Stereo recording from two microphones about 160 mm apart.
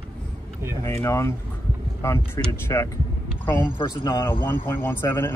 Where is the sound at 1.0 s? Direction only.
20° left (ahead or behind).